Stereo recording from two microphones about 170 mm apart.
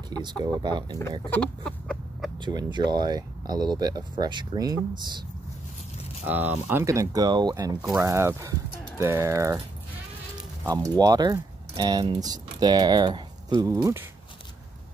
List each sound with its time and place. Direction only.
0.1 s speech: 25° right (ahead or behind)
1.3 s chicken: 5° left (ahead or behind)
2.4 s speech: 25° right (ahead or behind)
6.2 s speech: 10° right (ahead or behind)
10.7 s speech: 20° right (ahead or behind)